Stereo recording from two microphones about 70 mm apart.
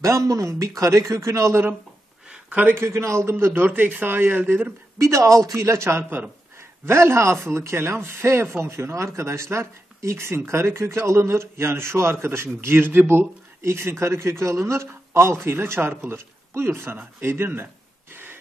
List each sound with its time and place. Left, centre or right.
0.0 s speech: right
2.7 s speech: right
5.0 s speech: right
18.1 s a sound: right